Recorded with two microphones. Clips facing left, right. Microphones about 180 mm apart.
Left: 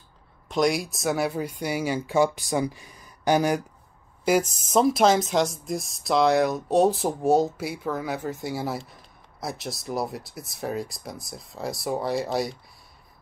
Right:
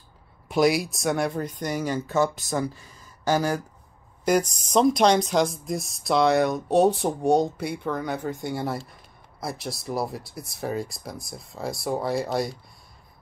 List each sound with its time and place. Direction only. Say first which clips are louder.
0.5 s speech: right 2 dB; 5° right (ahead or behind)